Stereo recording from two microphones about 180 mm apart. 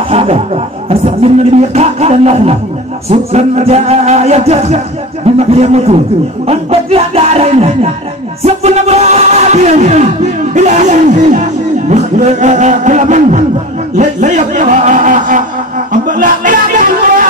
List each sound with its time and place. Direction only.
0.1 s music: 35° right (ahead or behind)
13.9 s a man's voice: 40° right (ahead or behind)
15.9 s music: 45° right (ahead or behind)